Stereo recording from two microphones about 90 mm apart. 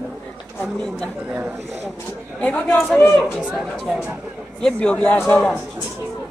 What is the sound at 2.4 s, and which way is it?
Speech, 15° left (ahead or behind).